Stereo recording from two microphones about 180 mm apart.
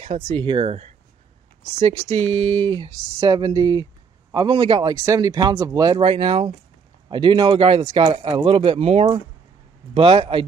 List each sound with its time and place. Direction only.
0.0 s speech: 35° right (ahead or behind)
2.3 s speech: 35° right (ahead or behind); by 5.9 s 20° right (ahead or behind)
5.9 s speech: 30° right (ahead or behind)